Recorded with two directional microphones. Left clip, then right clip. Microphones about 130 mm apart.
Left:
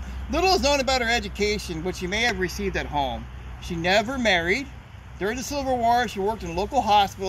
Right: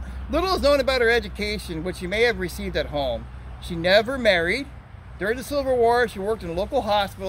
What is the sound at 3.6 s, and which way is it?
Speech, 30° right (ahead or behind).